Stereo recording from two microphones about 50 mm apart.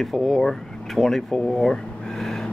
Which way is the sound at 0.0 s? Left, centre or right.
Centre.